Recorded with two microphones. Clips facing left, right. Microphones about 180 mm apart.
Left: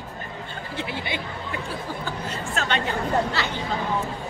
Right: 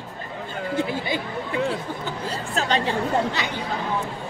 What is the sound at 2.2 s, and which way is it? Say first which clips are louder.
Speech: right 3 dB; 35° right (ahead or behind).